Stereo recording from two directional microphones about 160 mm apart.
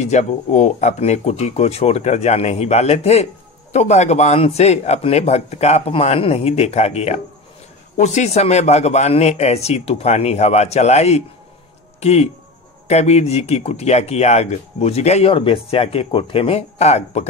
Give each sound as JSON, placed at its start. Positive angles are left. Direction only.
{"t": 0.0, "sound": "speech", "side_deg": 45}